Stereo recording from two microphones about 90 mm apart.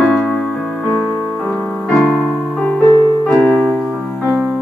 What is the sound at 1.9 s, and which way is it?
Music, 10° left (ahead or behind).